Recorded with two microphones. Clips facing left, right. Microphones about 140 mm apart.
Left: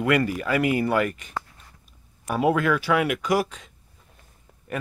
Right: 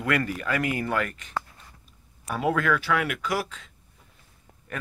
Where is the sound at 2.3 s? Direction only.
15° left (ahead or behind).